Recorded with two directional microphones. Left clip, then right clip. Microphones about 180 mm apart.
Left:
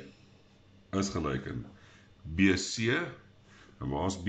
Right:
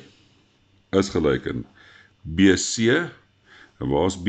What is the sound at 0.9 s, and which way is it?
Speech, 40° right (ahead or behind).